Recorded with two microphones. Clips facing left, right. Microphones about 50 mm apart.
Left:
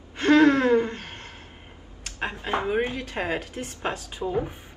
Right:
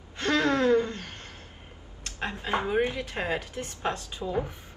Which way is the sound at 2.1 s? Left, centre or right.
Left.